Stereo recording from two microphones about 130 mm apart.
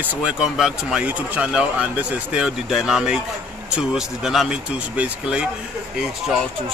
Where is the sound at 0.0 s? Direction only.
10° right (ahead or behind).